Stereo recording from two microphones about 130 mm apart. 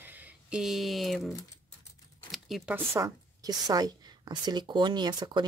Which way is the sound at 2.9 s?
25° right (ahead or behind).